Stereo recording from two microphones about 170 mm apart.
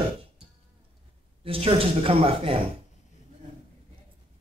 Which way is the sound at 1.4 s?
35° right (ahead or behind).